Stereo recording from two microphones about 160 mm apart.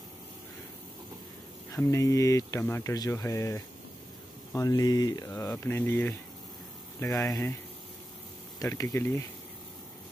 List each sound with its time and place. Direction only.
1.7 s speech: 20° left (ahead or behind)
8.5 s speech: 20° left (ahead or behind)